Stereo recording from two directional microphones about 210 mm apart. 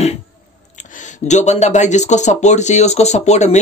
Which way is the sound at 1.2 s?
35° left (ahead or behind).